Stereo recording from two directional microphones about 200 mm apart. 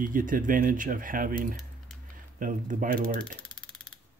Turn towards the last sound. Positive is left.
turn(degrees=5)  # may be behind; listen again after turning